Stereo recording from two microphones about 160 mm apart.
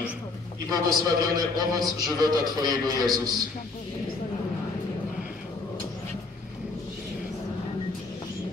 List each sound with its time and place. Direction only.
0.8 s a man's voice: 25° right (ahead or behind)